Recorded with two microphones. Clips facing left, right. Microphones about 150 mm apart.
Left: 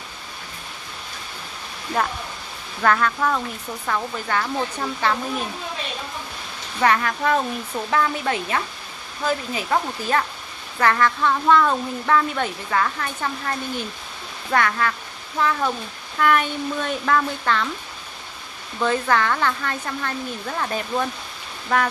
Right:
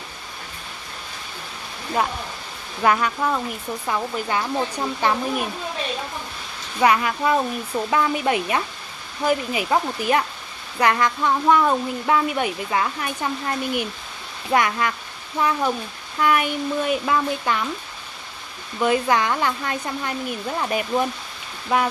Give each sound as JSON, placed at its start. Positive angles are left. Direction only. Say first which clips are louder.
{"t": 2.8, "sound": "a woman's voice", "louder": "even", "side_deg": -15}
{"t": 6.8, "sound": "a woman's voice", "louder": "right 1 dB", "side_deg": -15}
{"t": 16.2, "sound": "a woman's voice", "louder": "even", "side_deg": -10}
{"t": 18.8, "sound": "a woman's voice", "louder": "right 1 dB", "side_deg": -15}